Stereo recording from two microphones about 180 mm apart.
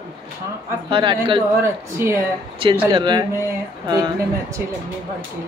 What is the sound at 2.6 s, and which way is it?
Speech, 30° right (ahead or behind).